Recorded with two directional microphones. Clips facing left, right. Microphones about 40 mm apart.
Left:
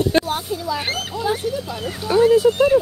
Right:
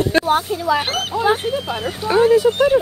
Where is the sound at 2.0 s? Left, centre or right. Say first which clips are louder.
Right 1 dB; right.